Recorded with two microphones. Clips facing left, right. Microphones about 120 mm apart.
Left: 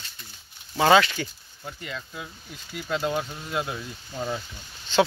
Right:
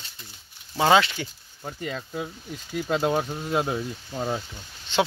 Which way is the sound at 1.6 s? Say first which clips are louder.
Right 4 dB; 35° right (ahead or behind).